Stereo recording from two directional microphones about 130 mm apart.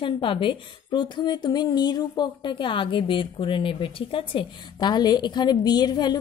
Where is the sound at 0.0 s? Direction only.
40° left (ahead or behind).